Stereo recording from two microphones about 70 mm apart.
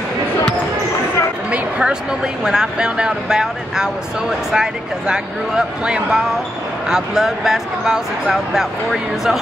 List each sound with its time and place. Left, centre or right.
1.5 s a sound: centre
2.4 s speech: centre
6.9 s speech: centre